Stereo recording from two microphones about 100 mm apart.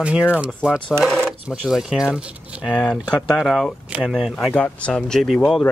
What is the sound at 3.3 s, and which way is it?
Speech, centre (ahead or behind).